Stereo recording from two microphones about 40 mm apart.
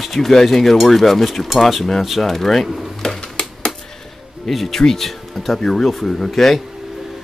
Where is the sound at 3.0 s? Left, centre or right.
Centre.